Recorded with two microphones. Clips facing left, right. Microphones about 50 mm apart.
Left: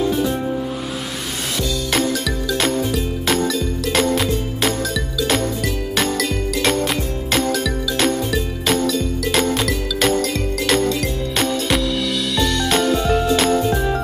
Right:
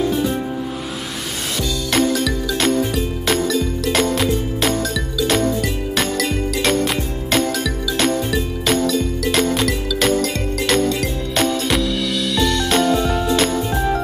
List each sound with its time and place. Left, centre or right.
0.1 s music: centre
1.9 s music: centre